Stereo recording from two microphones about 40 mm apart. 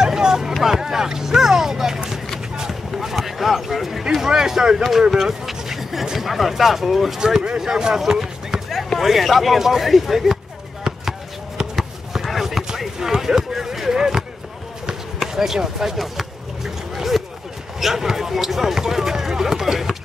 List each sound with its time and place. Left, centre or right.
0.0 s hubbub: centre
2.5 s basketball bounce: centre
4.0 s a sound: centre
6.1 s speech: centre
7.2 s speech: centre
9.0 s speech: centre
10.8 s basketball bounce: centre
12.8 s a sound: centre
15.1 s speech: centre
16.0 s a sound: centre
17.7 s speech: centre
18.8 s run: centre